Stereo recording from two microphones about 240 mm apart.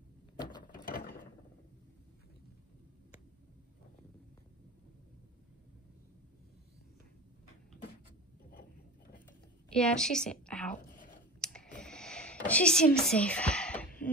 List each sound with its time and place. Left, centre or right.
0.4 s gears: centre
0.8 s gears: left
9.7 s a sound: centre